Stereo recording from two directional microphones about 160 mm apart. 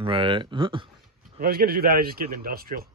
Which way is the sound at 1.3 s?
70° right (ahead or behind).